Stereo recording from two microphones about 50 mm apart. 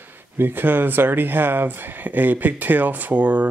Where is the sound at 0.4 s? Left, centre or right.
Right.